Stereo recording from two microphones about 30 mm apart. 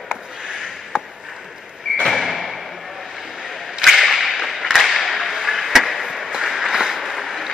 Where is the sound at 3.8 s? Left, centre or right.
Centre.